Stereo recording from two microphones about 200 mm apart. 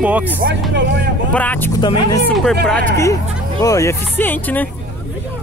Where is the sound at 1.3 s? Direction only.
10° left (ahead or behind).